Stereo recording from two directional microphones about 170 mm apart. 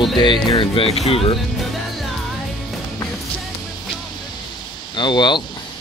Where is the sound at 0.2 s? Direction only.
25° left (ahead or behind).